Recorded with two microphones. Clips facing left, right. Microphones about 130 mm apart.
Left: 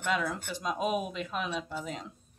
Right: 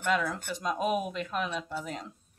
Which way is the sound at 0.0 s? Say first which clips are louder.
Right 2 dB; 5° left (ahead or behind).